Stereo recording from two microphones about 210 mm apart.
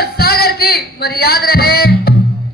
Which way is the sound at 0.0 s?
50° left (ahead or behind).